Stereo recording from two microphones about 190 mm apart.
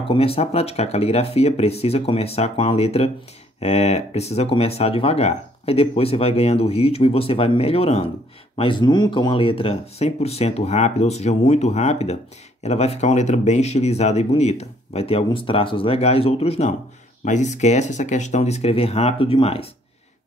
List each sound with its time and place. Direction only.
0.1 s speech: 30° left (ahead or behind)